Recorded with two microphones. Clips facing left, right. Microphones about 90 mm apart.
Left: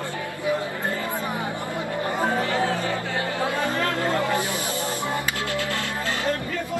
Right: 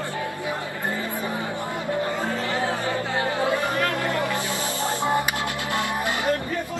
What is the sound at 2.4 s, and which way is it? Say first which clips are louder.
Speech: left 1 dB; 20° right (ahead or behind).